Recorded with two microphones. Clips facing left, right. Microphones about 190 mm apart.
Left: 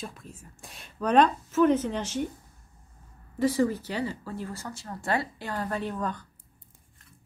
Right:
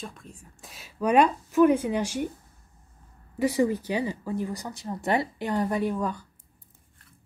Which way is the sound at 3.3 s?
15° right (ahead or behind).